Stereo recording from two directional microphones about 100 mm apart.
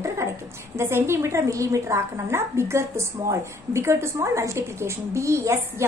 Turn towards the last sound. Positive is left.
turn(degrees=-30)  # may be behind; listen again after turning